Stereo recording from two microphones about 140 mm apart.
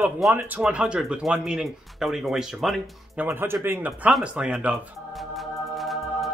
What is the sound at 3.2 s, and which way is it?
Speech, 15° right (ahead or behind).